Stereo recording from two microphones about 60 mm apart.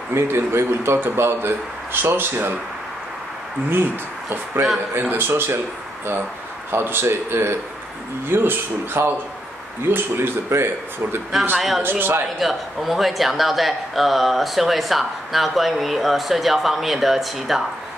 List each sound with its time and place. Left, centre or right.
0.1 s speech: right
5.0 s speech: right
6.7 s speech: right
11.5 s speech: centre
11.8 s speech: right
12.4 s speech: centre